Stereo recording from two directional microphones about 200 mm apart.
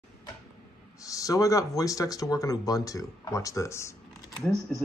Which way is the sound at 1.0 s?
15° left (ahead or behind).